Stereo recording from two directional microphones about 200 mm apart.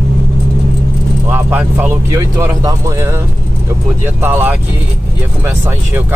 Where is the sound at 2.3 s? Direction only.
15° right (ahead or behind).